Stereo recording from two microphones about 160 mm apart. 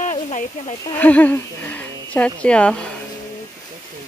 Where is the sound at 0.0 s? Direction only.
50° left (ahead or behind).